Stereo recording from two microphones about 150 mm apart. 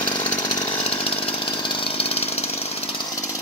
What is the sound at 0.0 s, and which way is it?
Chainsaw, 30° left (ahead or behind).